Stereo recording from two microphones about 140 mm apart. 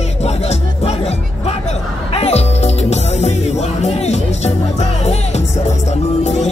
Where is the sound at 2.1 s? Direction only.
50° left (ahead or behind).